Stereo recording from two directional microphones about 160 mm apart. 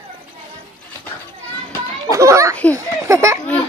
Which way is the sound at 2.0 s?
20° right (ahead or behind).